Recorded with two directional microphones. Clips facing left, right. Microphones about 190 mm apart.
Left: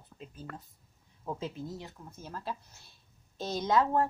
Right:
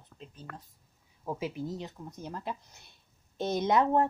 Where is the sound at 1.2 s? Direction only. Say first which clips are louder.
Right 3 dB; 10° right (ahead or behind).